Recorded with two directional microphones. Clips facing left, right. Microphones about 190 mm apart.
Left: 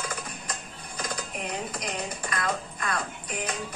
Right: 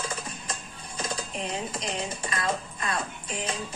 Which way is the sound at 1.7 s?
25° right (ahead or behind).